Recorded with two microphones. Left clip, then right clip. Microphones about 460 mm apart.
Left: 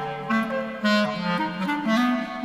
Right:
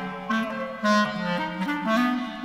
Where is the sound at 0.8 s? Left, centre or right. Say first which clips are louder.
Right 2 dB; centre.